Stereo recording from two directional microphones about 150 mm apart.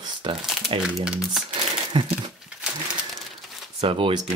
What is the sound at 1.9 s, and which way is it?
Speech, 30° right (ahead or behind).